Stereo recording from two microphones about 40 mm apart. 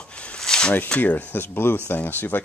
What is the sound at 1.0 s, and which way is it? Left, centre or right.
Speech, left.